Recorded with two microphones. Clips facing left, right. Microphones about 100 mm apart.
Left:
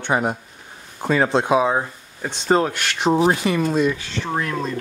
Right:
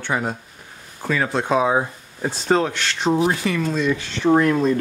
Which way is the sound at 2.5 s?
5° left (ahead or behind).